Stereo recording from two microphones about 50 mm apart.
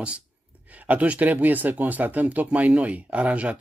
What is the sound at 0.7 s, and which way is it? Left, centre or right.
Speech, right.